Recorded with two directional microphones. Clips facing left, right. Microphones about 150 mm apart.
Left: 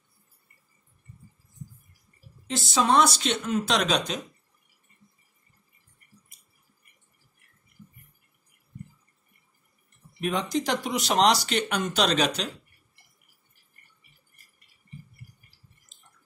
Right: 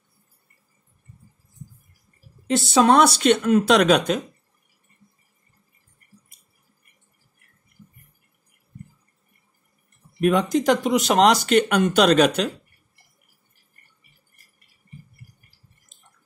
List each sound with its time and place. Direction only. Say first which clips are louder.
2.5 s speech: right 6 dB; 65° right (ahead or behind)
10.2 s speech: right 9 dB; 50° right (ahead or behind)